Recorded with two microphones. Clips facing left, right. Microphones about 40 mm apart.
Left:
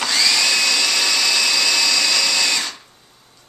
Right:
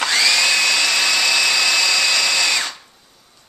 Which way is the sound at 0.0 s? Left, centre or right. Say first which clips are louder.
Right 2 dB; centre.